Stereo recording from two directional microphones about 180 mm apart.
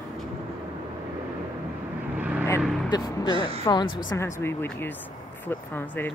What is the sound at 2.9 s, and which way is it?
A woman's voice, 25° left (ahead or behind).